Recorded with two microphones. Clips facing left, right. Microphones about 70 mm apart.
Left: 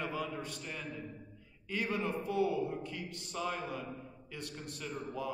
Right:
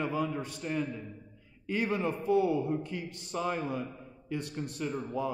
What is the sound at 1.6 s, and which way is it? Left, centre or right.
A man's voice, right.